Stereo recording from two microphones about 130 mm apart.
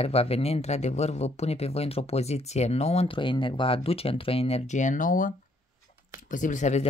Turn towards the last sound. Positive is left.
turn(degrees=70)  # may be behind; listen again after turning